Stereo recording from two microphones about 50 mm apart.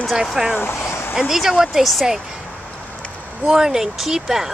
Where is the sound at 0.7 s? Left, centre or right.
Left.